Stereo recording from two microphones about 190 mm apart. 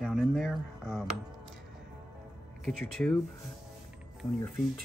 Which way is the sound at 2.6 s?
Centre (ahead or behind).